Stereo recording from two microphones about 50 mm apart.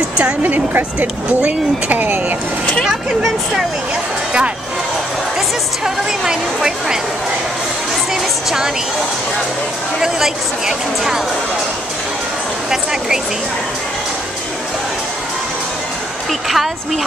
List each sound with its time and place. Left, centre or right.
0.4 s speech: right
2.9 s speech: centre
6.2 s speech: centre
8.1 s speech: centre
9.9 s speech: centre
16.3 s speech: centre